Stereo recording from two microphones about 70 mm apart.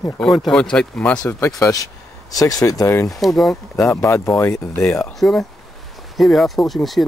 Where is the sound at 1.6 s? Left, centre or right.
Left.